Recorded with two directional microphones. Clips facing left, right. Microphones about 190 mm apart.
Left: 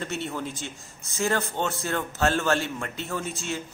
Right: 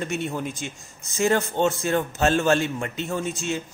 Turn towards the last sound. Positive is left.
turn(degrees=-20)  # may be behind; listen again after turning